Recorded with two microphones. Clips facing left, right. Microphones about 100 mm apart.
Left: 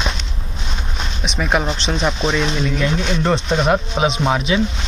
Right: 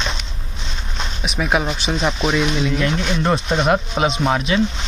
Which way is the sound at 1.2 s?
5° right (ahead or behind).